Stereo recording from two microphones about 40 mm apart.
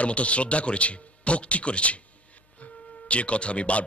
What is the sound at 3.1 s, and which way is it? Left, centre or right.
Speech, left.